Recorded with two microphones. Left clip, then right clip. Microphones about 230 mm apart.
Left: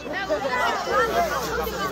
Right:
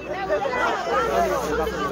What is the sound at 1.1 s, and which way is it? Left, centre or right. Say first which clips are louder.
Speech: right 2 dB; right.